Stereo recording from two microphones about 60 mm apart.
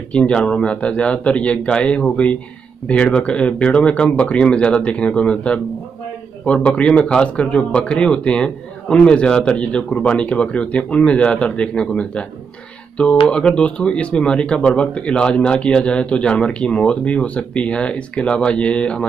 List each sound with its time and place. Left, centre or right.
0.1 s a man's voice: centre